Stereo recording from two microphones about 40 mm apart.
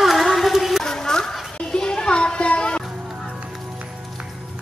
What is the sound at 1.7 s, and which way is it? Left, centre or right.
Children playing, centre.